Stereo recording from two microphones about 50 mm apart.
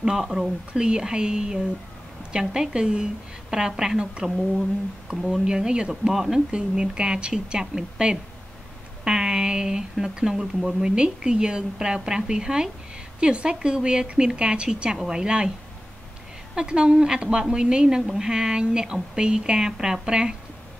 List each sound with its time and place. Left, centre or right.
0.0 s speech: centre
5.3 s speech: centre
16.5 s speech: centre